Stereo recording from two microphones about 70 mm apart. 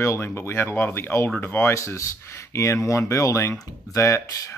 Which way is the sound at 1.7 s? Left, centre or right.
Left.